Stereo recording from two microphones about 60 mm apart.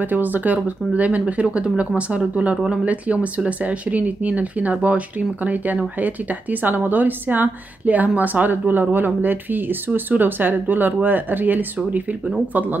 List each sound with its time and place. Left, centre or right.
0.0 s a woman's voice: right